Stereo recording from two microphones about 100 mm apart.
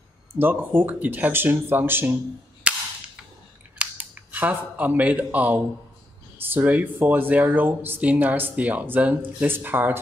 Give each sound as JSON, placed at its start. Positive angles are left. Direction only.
{"t": 0.4, "sound": "speech", "side_deg": -20}
{"t": 2.6, "sound": "cap gun", "side_deg": -10}
{"t": 3.7, "sound": "speech", "side_deg": -10}